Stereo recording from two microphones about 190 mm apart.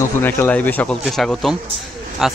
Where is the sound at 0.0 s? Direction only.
10° left (ahead or behind).